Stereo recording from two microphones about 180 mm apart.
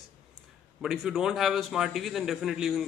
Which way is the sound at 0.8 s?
5° right (ahead or behind).